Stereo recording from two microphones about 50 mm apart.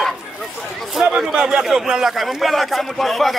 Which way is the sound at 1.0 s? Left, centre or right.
Centre.